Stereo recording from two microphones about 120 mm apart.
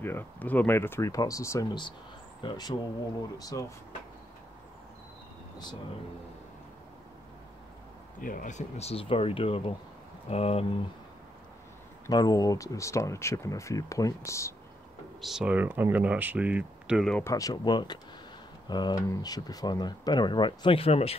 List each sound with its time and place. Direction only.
0.0 s speech: 20° left (ahead or behind)
1.7 s speech: 40° left (ahead or behind)
8.5 s speech: 70° left (ahead or behind); by 10.7 s 55° left (ahead or behind)
12.1 s speech: 35° left (ahead or behind)
15.2 s speech: 5° right (ahead or behind)
17.2 s speech: 30° left (ahead or behind); by 21.1 s 55° left (ahead or behind)